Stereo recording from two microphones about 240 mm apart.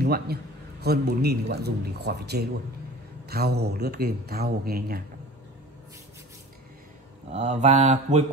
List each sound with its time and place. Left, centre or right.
0.0 s a man's voice: right
7.3 s mantra: right